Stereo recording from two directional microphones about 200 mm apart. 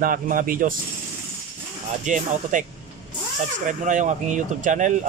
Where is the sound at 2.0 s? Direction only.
40° right (ahead or behind).